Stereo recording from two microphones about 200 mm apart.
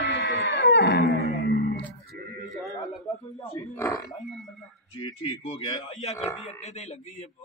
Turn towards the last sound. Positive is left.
turn(degrees=30)  # may be behind; listen again after turning